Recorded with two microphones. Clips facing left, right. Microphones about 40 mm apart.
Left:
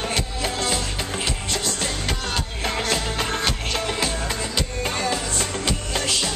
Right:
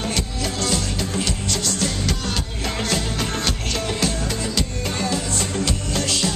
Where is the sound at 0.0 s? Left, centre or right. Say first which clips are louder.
Even; centre.